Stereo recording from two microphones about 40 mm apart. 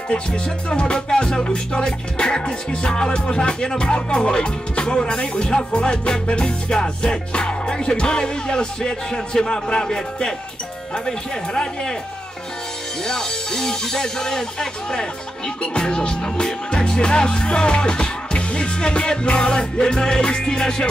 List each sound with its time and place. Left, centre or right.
0.1 s music: left
13.0 s music: centre